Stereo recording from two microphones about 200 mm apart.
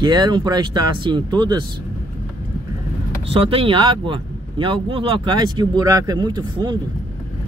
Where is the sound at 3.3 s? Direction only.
25° right (ahead or behind).